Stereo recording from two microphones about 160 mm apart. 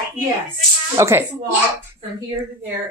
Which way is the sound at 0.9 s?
15° right (ahead or behind).